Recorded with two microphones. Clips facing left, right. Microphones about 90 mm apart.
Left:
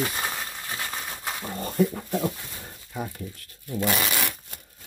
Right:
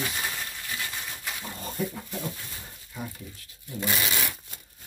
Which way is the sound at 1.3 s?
40° left (ahead or behind).